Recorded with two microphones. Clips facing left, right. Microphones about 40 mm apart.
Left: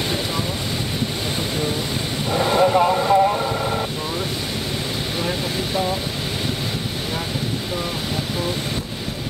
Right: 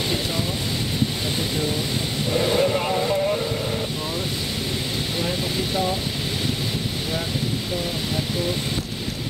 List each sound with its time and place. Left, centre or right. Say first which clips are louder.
2.3 s vehicle: left 3 dB; centre
2.9 s vehicle: left 5 dB; left